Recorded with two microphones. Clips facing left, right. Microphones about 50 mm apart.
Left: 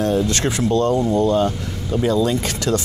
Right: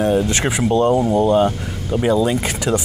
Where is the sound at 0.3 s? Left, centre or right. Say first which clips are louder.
Right 1 dB; centre.